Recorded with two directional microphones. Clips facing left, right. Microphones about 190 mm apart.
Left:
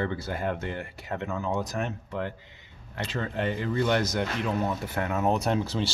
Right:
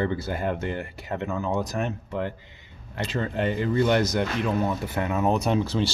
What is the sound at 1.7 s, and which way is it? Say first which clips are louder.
Speech: right 3 dB; 30° right (ahead or behind).